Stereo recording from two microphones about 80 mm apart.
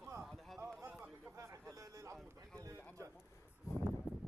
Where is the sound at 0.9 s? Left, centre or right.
Centre.